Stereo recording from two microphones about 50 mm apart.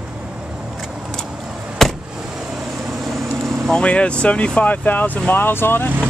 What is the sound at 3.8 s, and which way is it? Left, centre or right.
Speech, left.